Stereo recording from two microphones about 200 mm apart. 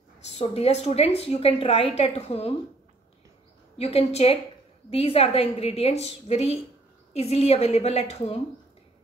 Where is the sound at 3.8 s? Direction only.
30° left (ahead or behind).